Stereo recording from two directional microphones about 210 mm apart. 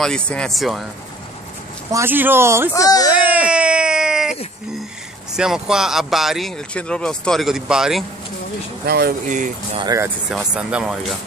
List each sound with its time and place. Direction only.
0.0 s speech: 5° left (ahead or behind)
1.9 s speech: 10° right (ahead or behind)
2.7 s speech: 15° left (ahead or behind)
3.1 s a sound: 5° right (ahead or behind)
5.3 s speech: 5° right (ahead or behind)
8.8 s speech: 50° right (ahead or behind)
9.3 s speech: 35° right (ahead or behind)
9.8 s speech: 15° right (ahead or behind)
10.5 s speech: 5° right (ahead or behind)